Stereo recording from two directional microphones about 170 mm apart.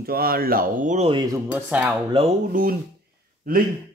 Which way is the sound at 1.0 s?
25° right (ahead or behind).